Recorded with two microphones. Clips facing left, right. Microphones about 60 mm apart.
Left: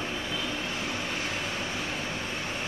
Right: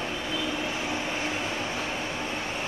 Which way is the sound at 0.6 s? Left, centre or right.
Centre.